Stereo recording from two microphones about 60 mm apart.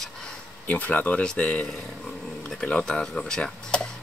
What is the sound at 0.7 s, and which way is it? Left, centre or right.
Speech, left.